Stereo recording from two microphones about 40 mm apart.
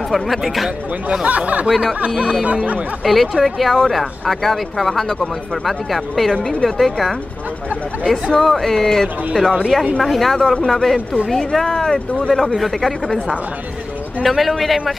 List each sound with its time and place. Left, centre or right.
1.2 s speech: right
3.1 s speech: centre; by 9.5 s left
10.0 s speech: centre
14.2 s speech: centre